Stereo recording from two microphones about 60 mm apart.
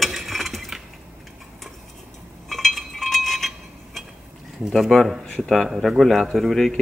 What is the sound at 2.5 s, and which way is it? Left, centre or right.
Chink, centre.